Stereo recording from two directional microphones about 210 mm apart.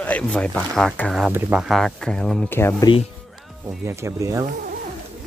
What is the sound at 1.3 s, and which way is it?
Speech, 10° right (ahead or behind).